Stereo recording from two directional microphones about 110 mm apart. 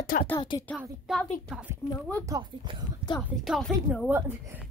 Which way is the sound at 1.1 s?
5° right (ahead or behind).